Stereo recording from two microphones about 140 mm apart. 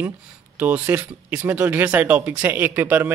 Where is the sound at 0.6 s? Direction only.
10° right (ahead or behind).